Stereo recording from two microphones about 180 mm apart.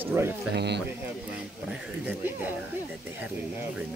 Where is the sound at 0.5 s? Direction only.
70° right (ahead or behind).